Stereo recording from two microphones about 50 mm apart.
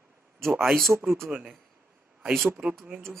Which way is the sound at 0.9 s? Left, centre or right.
Right.